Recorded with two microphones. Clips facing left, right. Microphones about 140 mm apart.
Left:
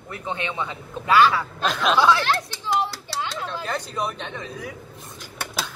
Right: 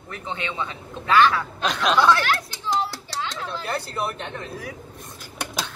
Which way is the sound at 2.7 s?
20° left (ahead or behind).